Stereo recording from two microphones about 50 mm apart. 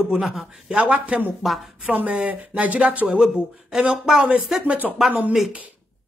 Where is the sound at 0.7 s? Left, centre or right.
Right.